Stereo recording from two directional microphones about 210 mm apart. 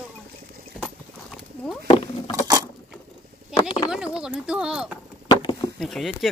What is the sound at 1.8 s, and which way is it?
Patter, 25° left (ahead or behind).